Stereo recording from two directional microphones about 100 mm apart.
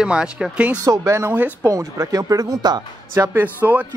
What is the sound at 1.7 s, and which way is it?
Speech, 35° right (ahead or behind).